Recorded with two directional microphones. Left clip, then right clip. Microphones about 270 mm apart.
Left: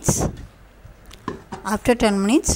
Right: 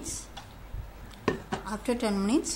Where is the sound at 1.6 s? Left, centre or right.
Left.